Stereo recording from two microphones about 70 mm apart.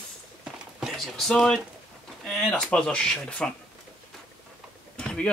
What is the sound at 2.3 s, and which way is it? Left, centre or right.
Speech, centre.